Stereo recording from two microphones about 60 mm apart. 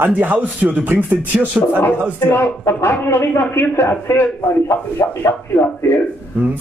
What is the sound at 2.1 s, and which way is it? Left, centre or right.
Speech, left.